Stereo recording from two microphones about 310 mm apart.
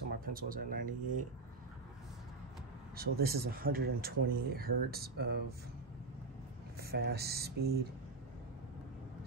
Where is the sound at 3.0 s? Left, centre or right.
Right.